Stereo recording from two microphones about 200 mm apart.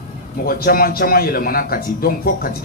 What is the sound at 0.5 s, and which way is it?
Speech, 45° left (ahead or behind).